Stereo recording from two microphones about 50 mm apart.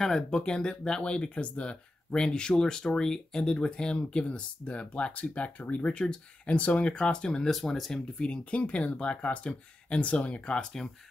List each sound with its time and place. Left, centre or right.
0.0 s speech: centre
8.2 s speech: left